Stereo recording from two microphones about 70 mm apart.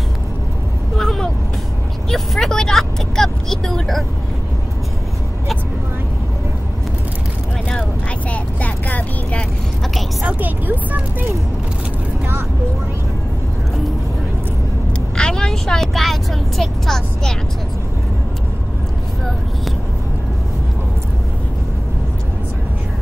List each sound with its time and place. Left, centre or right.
0.9 s vehicle: centre
8.3 s vehicle: left
10.2 s a sound: right
15.1 s vehicle: centre